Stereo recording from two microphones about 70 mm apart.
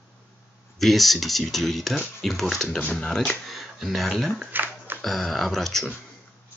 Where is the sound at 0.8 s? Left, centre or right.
Centre.